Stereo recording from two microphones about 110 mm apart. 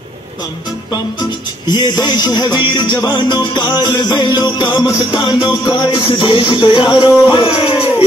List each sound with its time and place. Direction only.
1.7 s music: 40° left (ahead or behind)